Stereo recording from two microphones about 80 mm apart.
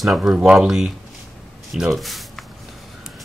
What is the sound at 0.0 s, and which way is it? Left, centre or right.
Speech, centre.